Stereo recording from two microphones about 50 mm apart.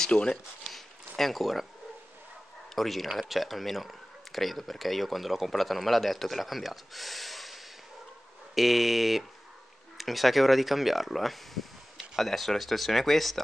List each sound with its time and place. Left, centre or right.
0.0 s speech: centre
0.7 s a sound: centre
2.7 s speech: centre